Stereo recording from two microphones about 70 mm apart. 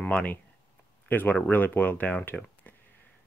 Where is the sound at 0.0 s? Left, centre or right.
Left.